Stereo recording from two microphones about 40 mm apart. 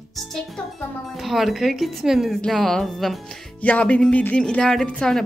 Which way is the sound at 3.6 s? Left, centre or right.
Left.